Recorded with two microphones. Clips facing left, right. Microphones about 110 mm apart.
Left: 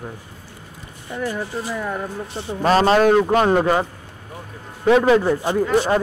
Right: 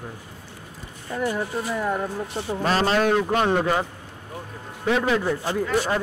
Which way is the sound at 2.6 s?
45° left (ahead or behind).